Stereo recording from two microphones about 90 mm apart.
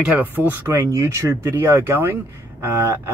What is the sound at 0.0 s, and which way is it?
Speech, 15° right (ahead or behind).